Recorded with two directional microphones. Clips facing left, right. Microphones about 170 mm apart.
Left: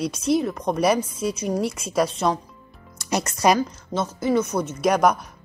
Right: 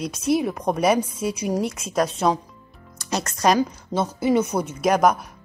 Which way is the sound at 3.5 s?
15° right (ahead or behind).